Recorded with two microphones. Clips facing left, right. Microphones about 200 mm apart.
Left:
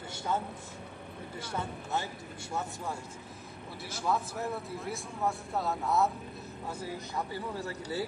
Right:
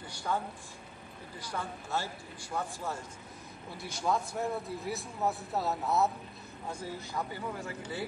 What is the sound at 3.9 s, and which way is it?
Speech, 5° left (ahead or behind).